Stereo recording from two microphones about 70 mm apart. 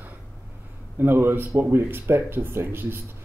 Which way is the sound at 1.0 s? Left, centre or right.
Right.